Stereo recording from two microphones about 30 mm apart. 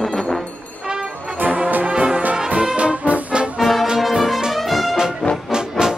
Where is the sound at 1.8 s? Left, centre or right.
Right.